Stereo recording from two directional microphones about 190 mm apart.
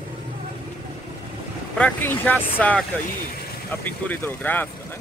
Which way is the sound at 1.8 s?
10° left (ahead or behind).